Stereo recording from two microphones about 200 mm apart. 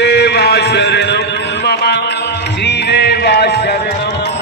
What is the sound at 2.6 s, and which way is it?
Music, 55° left (ahead or behind).